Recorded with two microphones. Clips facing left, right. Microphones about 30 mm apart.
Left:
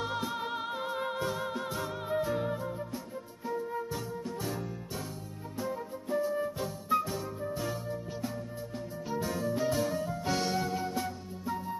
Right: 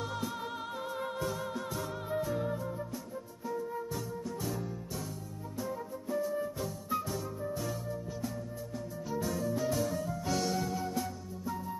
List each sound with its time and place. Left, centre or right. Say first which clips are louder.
0.0 s music: left 3 dB; left